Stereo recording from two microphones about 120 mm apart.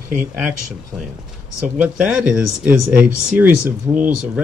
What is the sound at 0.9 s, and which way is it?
Speech, 5° right (ahead or behind).